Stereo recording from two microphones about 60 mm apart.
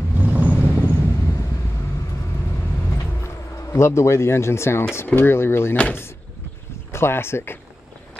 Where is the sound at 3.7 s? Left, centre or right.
Left.